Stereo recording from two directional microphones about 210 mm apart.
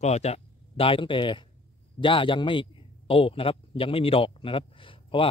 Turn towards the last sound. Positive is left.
turn(degrees=25)  # may be behind; listen again after turning